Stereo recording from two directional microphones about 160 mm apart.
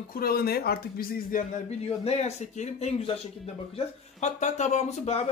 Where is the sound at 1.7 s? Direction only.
40° left (ahead or behind).